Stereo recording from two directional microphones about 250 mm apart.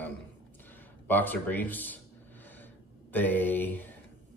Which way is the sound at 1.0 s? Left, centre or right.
Centre.